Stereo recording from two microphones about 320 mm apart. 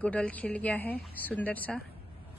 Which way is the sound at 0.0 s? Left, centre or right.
Centre.